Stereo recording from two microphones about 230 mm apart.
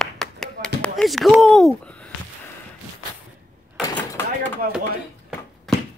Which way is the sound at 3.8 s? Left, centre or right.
Centre.